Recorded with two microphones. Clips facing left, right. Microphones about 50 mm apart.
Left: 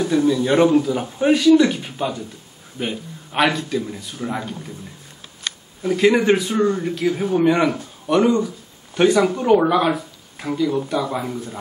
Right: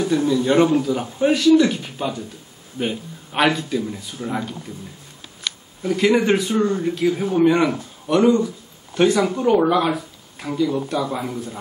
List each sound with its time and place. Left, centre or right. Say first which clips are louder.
0.3 s a man's voice: left 1 dB; left
0.8 s speech: left 1 dB; centre
5.9 s speech: left 1 dB; centre